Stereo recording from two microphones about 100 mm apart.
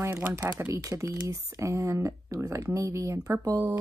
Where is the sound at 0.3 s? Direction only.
35° right (ahead or behind).